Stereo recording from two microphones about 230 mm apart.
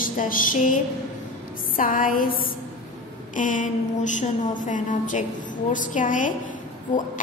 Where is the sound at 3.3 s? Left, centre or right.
Left.